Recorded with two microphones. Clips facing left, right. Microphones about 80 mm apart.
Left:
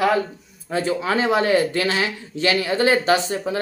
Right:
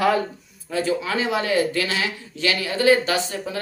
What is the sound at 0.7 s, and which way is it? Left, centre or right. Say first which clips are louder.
Speech: left 2 dB; left.